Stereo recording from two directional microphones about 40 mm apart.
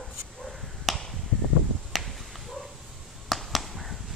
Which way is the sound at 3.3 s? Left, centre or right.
Centre.